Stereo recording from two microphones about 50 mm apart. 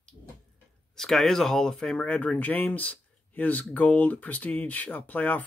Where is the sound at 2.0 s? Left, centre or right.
Left.